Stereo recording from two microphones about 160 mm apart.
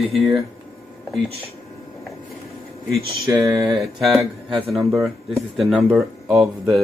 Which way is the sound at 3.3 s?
25° right (ahead or behind).